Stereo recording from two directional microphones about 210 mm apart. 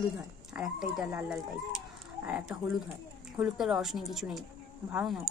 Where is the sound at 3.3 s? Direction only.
5° right (ahead or behind).